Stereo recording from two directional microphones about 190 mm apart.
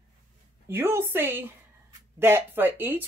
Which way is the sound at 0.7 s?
10° right (ahead or behind).